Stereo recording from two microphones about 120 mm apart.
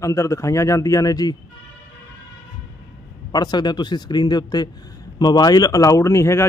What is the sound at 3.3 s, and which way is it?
A man's voice, 35° left (ahead or behind).